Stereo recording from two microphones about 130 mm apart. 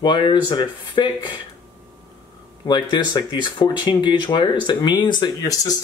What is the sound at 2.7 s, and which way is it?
Speech, 35° left (ahead or behind).